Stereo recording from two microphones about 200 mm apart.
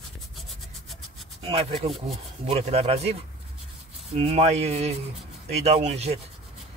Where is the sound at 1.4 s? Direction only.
30° right (ahead or behind).